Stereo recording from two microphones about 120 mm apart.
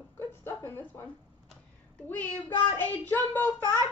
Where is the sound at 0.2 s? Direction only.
20° left (ahead or behind).